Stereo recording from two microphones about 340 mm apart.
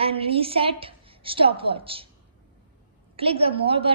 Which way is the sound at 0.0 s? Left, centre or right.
Centre.